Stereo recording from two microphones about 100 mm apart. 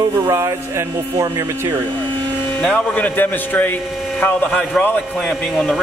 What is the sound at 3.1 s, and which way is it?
A man's voice, 20° left (ahead or behind).